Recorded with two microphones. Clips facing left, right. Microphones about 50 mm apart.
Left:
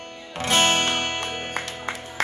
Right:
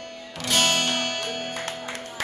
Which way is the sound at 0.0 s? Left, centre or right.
Left.